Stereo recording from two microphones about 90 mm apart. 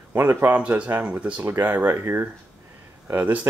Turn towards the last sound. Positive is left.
turn(degrees=-20)  # may be behind; listen again after turning